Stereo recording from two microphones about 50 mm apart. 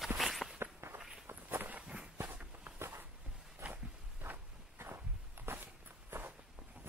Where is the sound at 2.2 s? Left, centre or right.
Right.